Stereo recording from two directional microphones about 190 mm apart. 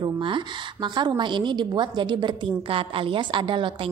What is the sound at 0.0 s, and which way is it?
A woman's voice, 25° right (ahead or behind).